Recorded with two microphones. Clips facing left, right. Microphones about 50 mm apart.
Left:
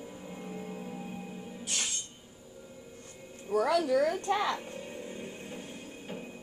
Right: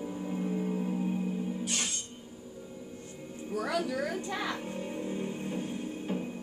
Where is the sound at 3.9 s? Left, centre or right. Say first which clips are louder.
Left 6 dB; left.